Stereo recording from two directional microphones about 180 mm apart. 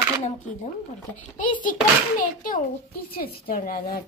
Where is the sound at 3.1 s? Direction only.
55° left (ahead or behind).